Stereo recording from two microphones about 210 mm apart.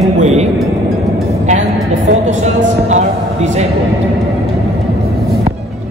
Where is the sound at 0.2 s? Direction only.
30° right (ahead or behind).